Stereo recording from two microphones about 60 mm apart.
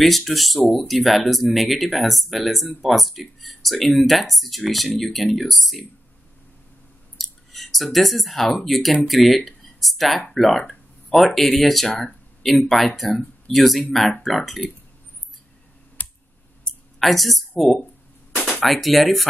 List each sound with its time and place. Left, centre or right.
0.0 s speech: centre
7.2 s speech: centre
16.0 s clicking: left
16.6 s a sound: centre
18.3 s a sound: centre
18.6 s speech: centre